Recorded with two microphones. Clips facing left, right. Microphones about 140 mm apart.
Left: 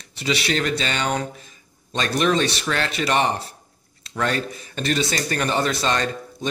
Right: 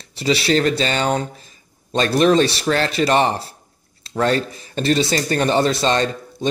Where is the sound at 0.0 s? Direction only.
35° right (ahead or behind).